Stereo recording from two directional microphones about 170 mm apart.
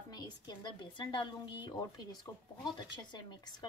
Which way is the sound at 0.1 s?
25° left (ahead or behind).